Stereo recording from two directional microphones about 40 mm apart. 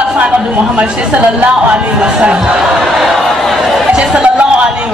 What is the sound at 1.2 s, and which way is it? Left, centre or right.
Speech, right.